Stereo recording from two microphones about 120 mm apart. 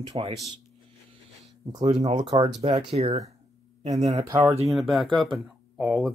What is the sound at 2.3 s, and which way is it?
Speech, 40° right (ahead or behind).